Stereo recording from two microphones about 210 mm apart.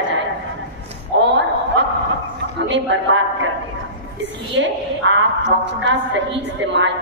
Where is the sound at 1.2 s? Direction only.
55° right (ahead or behind).